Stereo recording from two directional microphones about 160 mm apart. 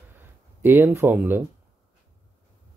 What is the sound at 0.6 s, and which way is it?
Speech, 15° right (ahead or behind).